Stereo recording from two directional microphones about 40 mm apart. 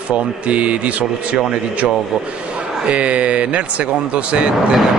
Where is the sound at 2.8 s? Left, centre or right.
Right.